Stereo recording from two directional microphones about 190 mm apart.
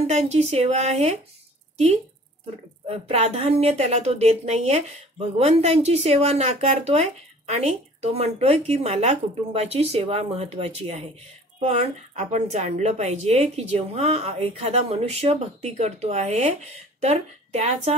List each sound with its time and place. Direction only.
0.0 s a woman's voice: 35° right (ahead or behind)
2.9 s a woman's voice: 35° right (ahead or behind)